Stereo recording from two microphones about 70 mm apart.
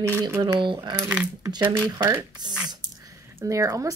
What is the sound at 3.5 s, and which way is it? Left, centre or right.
Speech, right.